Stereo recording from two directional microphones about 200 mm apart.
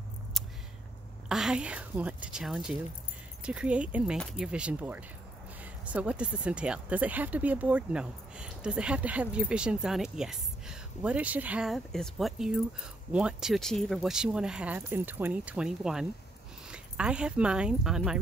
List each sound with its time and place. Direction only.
1.3 s speech: 5° right (ahead or behind)